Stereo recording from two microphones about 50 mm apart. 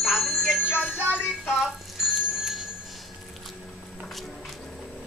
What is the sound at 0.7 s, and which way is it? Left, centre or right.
Music, left.